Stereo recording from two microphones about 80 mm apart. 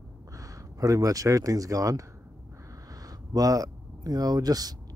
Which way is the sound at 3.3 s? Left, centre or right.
Right.